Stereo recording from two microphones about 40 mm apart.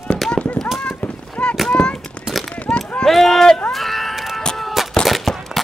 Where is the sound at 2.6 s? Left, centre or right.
Left.